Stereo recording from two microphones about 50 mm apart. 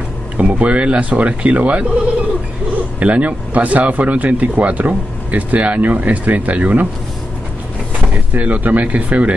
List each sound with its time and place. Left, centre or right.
0.4 s speech: right
3.0 s speech: right
8.4 s speech: right